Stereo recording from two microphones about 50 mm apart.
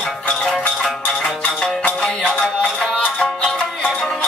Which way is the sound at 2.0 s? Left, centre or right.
Centre.